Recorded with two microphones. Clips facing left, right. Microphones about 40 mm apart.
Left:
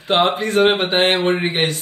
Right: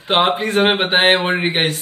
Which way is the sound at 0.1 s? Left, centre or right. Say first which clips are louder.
Even; right.